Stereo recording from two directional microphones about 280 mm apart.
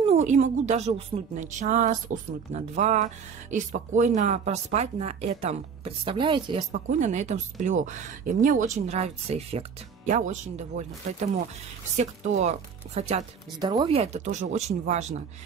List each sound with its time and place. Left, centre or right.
0.0 s speech: right